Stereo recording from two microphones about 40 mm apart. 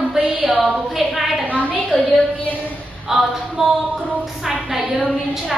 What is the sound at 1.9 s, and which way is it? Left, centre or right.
Speech, centre.